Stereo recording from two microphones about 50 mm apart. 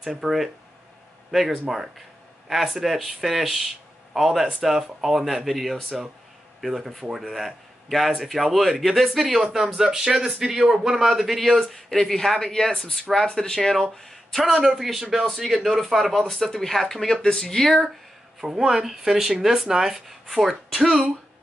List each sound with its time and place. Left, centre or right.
0.0 s a man's voice: centre
14.5 s a man's voice: centre
18.5 s speech: centre